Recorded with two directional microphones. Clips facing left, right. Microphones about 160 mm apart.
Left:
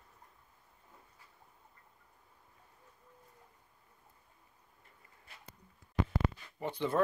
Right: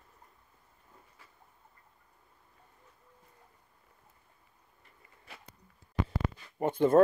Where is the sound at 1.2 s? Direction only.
90° right.